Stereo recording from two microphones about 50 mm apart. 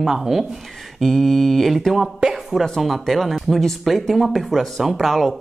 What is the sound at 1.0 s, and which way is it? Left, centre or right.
Speech, centre.